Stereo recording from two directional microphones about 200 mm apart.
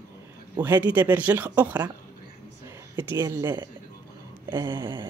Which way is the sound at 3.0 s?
10° right (ahead or behind).